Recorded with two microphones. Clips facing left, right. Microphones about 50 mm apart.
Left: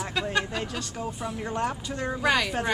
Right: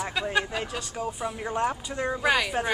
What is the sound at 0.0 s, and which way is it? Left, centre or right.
Speech, centre.